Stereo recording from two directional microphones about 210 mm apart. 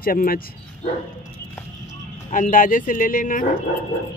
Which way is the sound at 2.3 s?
40° left (ahead or behind).